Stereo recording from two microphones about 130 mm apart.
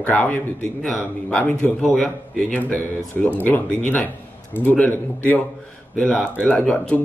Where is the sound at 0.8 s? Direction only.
Centre (ahead or behind).